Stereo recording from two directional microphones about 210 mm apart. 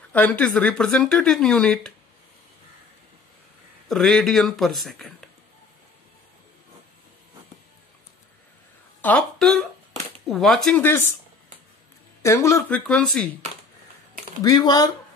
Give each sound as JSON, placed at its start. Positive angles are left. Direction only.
{"t": 0.1, "sound": "speech", "side_deg": 5}
{"t": 3.9, "sound": "speech", "side_deg": 0}
{"t": 9.0, "sound": "speech", "side_deg": 5}
{"t": 12.2, "sound": "speech", "side_deg": 15}
{"t": 14.4, "sound": "speech", "side_deg": 15}